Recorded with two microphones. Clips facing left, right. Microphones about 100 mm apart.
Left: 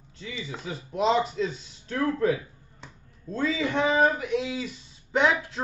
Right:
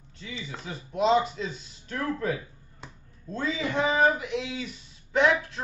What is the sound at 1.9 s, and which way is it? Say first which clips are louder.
Speech: left 4 dB; 40° left (ahead or behind).